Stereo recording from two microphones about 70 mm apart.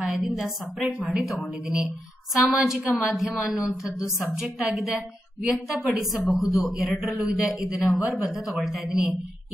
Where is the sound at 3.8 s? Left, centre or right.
Left.